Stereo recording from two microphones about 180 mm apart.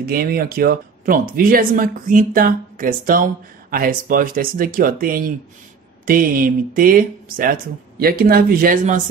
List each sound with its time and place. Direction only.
0.0 s speech: 55° right (ahead or behind)